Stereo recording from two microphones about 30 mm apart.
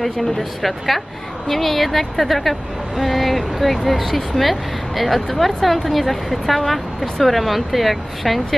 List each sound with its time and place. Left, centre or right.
0.0 s speech: centre